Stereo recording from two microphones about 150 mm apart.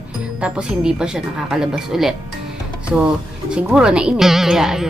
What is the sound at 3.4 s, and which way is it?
A woman's voice, 5° right (ahead or behind).